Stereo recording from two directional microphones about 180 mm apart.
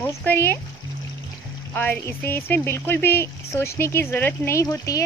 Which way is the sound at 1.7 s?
10° left (ahead or behind).